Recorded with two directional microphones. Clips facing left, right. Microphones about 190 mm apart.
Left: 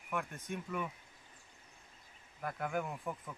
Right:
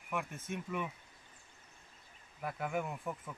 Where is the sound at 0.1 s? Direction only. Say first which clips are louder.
Even; 5° right (ahead or behind).